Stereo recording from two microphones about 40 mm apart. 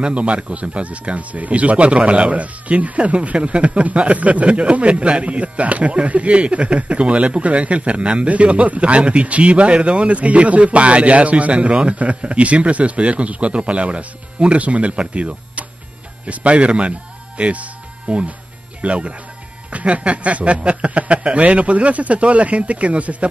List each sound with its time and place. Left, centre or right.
0.0 s speech: right
17.4 s music: right
18.8 s speech: right